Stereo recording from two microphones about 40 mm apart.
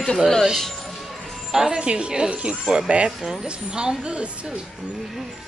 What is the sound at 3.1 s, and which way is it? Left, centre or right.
Speech, centre.